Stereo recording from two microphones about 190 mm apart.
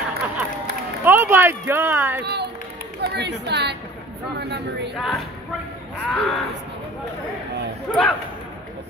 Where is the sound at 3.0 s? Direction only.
60° right (ahead or behind).